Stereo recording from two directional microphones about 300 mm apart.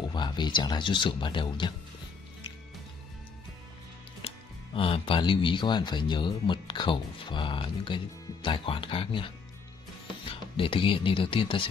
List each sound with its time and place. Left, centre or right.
0.1 s speech: centre
4.7 s speech: centre